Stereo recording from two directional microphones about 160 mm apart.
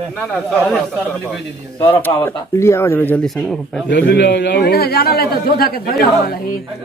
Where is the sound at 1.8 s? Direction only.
10° left (ahead or behind).